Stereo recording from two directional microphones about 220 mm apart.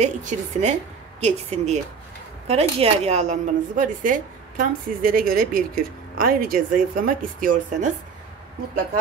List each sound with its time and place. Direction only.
0.0 s a woman's voice: 35° right (ahead or behind)